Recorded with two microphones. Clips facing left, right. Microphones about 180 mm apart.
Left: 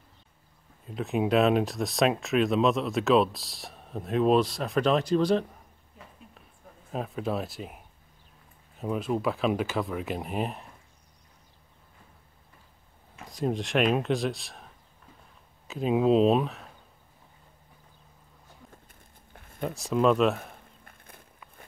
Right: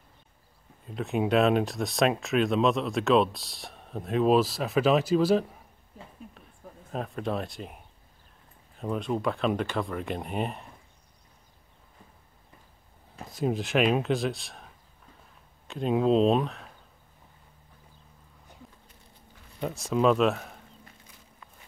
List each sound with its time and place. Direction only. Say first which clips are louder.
0.8 s speech: even; centre (ahead or behind)
6.9 s speech: left 1 dB; centre (ahead or behind)
13.3 s speech: right 1 dB; centre (ahead or behind)
18.9 s a sound: right 1 dB; 50° left (ahead or behind)
19.6 s speech: even; centre (ahead or behind)
20.8 s a sound: left 1 dB; 55° left (ahead or behind)